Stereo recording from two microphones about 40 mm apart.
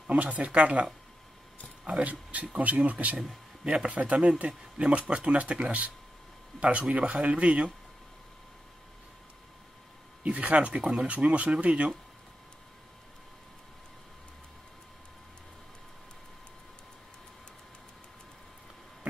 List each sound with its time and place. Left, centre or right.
0.1 s speech: right
1.9 s speech: right
10.2 s speech: right
11.1 s speech: right